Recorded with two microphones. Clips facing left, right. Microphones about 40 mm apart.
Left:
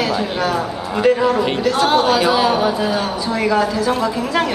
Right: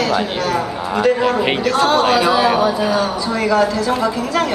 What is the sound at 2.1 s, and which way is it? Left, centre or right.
Speech, centre.